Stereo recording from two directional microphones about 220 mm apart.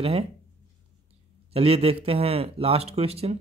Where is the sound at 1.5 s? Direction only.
25° right (ahead or behind).